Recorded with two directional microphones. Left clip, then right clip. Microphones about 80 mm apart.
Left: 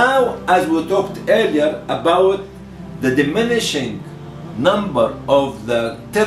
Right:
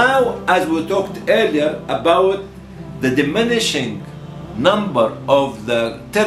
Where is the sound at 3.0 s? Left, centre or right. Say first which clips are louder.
Even; centre.